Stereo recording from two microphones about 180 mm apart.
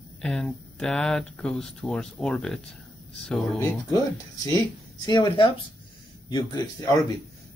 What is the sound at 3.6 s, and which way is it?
Speech, 20° left (ahead or behind).